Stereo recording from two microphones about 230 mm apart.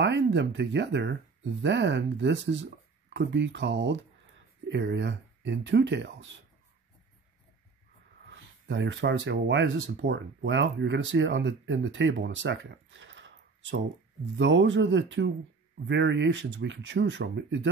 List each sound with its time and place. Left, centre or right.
0.0 s speech: right
8.3 s speech: right